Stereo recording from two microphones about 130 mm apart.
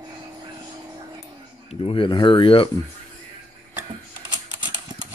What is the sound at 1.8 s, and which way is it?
Speech, 40° left (ahead or behind).